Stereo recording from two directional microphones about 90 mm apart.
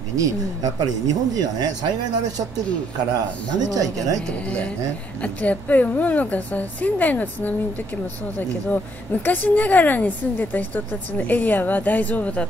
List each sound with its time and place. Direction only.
0.2 s speech: 40° right (ahead or behind)
4.5 s a woman's voice: 15° left (ahead or behind)